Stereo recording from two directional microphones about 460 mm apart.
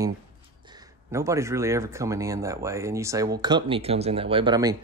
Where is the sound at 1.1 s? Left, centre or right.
Centre.